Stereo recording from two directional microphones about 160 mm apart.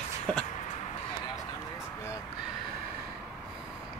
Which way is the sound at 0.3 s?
5° left (ahead or behind).